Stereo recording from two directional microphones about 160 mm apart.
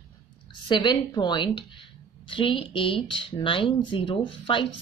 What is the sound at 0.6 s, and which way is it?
Speech, 30° left (ahead or behind).